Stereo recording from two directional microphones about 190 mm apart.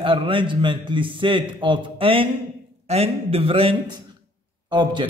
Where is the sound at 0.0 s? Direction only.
25° right (ahead or behind).